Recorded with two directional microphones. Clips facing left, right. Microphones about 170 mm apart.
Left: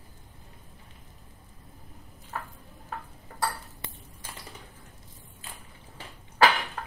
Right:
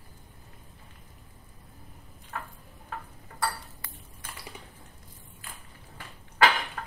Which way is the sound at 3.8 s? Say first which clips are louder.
Left 4 dB; 25° left (ahead or behind).